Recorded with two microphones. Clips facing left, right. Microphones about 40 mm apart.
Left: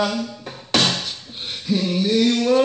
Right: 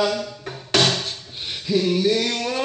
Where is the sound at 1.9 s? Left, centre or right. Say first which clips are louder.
Even; centre.